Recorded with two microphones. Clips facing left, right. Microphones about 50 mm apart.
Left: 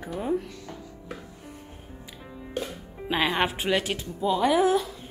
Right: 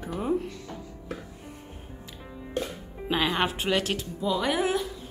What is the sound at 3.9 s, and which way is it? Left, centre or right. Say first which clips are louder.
Speech: left 2 dB; left.